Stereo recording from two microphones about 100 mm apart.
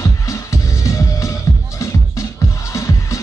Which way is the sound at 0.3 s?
30° left (ahead or behind).